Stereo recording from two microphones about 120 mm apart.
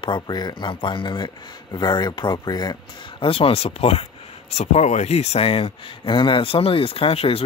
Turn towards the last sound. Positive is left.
turn(degrees=55)  # may be behind; listen again after turning